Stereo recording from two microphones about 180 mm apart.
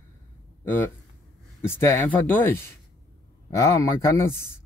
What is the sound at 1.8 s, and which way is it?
Speech, 15° left (ahead or behind).